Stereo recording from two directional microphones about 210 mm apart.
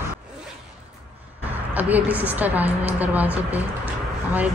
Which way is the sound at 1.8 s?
10° right (ahead or behind).